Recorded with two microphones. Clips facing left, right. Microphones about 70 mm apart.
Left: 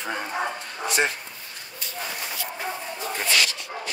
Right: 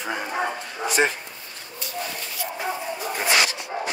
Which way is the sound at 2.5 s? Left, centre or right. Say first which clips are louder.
Right 6 dB; centre.